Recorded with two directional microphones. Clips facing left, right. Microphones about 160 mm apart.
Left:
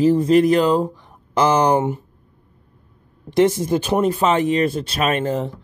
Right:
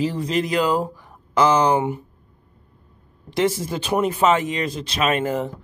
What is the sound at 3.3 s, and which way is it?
Speech, 50° left (ahead or behind).